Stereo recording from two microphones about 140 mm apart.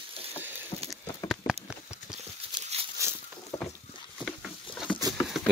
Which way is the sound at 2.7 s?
50° right (ahead or behind).